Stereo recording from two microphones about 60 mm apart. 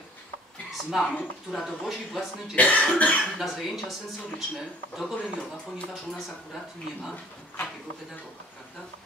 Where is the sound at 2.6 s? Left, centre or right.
Left.